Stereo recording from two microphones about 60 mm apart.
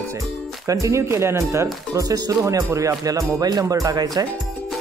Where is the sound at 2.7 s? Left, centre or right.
Right.